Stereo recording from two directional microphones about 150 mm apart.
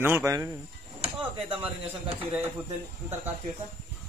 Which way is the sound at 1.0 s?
40° right (ahead or behind).